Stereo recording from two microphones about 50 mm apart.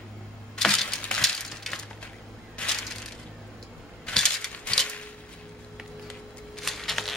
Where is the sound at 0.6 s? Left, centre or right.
Centre.